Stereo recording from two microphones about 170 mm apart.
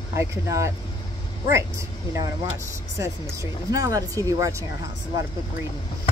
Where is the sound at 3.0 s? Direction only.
20° right (ahead or behind).